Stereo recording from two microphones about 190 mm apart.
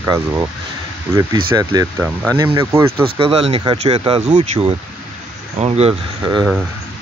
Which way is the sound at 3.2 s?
30° right (ahead or behind).